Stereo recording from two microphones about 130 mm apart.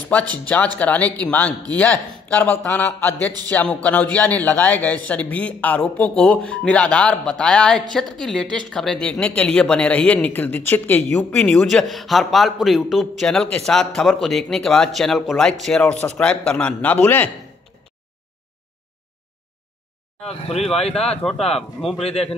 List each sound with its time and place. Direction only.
0.1 s speech: 10° left (ahead or behind)
20.2 s speech: 50° left (ahead or behind)
21.2 s speech: 5° left (ahead or behind)
21.9 s speech: 50° left (ahead or behind)